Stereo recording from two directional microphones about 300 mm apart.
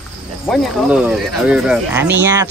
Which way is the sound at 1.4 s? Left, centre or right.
Centre.